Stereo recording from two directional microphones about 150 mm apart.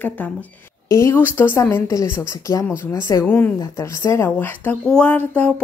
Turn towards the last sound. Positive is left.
turn(degrees=10)  # may be behind; listen again after turning